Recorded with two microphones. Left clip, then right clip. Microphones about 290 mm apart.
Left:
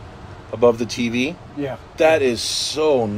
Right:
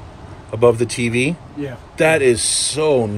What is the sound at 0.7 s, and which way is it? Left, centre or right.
Speech, right.